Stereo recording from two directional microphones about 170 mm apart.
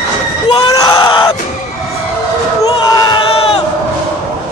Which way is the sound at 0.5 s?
20° left (ahead or behind).